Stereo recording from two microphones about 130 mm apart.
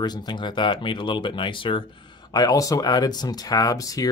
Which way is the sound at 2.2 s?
30° left (ahead or behind).